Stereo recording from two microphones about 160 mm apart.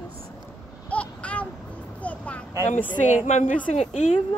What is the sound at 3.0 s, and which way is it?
Speech, 50° left (ahead or behind).